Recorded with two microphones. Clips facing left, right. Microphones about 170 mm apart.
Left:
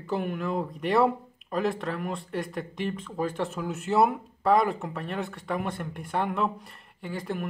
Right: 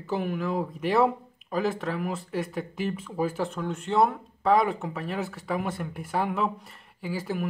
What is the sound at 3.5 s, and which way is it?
Speech, 5° left (ahead or behind).